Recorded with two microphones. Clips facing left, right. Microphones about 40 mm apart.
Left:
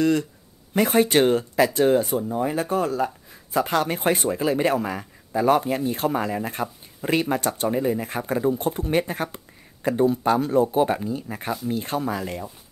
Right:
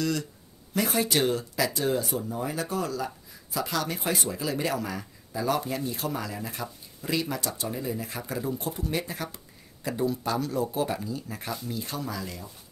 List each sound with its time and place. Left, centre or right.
0.0 s speech: left